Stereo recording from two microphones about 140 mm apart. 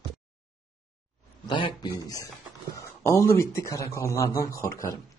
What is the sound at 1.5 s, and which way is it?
A man's voice, 35° left (ahead or behind).